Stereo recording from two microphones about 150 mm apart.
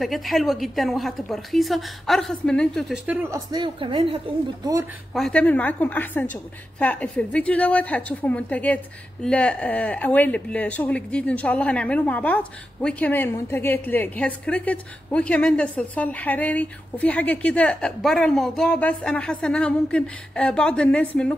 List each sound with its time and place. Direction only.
0.0 s a woman's voice: centre (ahead or behind)
3.1 s speech: 15° right (ahead or behind)
3.6 s a woman's voice: 35° right (ahead or behind)
5.1 s a woman's voice: 5° left (ahead or behind)